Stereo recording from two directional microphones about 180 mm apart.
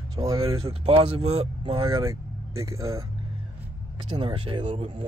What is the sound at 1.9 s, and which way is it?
Speech, 15° right (ahead or behind).